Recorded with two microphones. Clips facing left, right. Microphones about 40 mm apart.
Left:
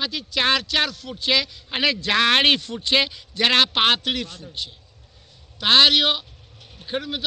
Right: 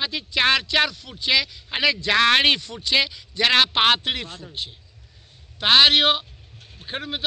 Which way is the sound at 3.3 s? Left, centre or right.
Centre.